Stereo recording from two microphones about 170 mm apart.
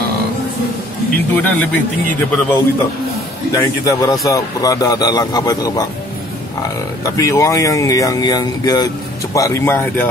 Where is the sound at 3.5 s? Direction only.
20° left (ahead or behind).